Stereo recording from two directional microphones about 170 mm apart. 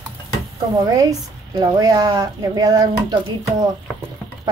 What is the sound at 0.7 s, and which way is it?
Speech, 20° right (ahead or behind).